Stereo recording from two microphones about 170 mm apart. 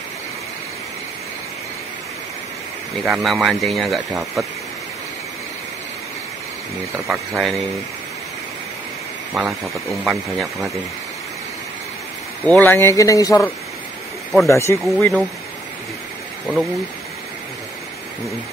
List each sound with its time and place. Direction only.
3.0 s speech: centre (ahead or behind)
7.1 s speech: centre (ahead or behind)
9.3 s speech: centre (ahead or behind)
12.4 s speech: 10° left (ahead or behind)
14.5 s speech: 15° left (ahead or behind)
16.5 s speech: 10° right (ahead or behind)